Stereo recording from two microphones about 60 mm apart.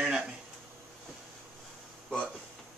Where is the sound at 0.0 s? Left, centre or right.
Centre.